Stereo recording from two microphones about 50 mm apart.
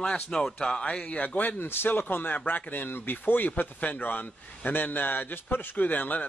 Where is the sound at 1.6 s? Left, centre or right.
Left.